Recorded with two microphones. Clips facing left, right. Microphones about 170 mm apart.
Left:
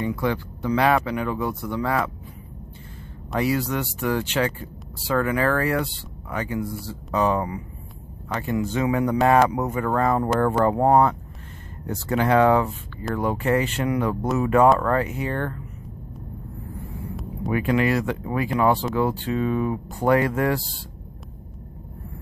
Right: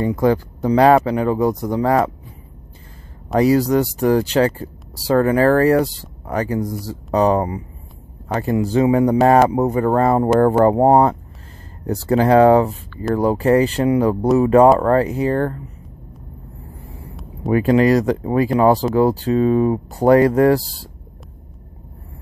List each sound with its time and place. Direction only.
0.0 s speech: 40° right (ahead or behind)
3.3 s speech: 40° right (ahead or behind)
17.1 s a sound: centre (ahead or behind)
17.5 s speech: 35° right (ahead or behind)